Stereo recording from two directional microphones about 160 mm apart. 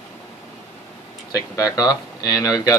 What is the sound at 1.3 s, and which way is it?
Speech, 20° left (ahead or behind).